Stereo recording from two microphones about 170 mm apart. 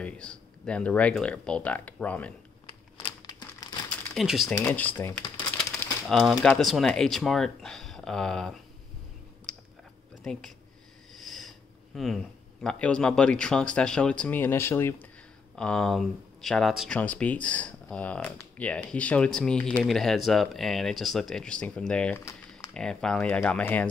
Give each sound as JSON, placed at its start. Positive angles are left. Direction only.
{"t": 0.0, "sound": "speech", "side_deg": 5}
{"t": 2.6, "sound": "crumpling", "side_deg": 25}
{"t": 4.1, "sound": "speech", "side_deg": 0}
{"t": 4.6, "sound": "speech", "side_deg": 10}
{"t": 9.5, "sound": "clicking", "side_deg": 5}
{"t": 10.2, "sound": "speech", "side_deg": 5}
{"t": 11.1, "sound": "sniff", "side_deg": 0}
{"t": 12.6, "sound": "speech", "side_deg": 5}